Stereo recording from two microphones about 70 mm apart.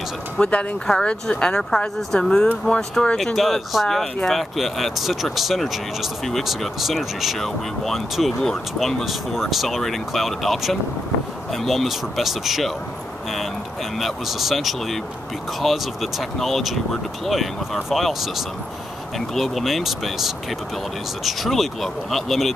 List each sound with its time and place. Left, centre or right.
0.4 s speech: centre
3.3 s speech: centre
13.9 s speech: centre